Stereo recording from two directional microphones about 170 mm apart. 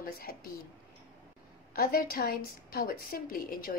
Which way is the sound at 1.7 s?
60° left (ahead or behind).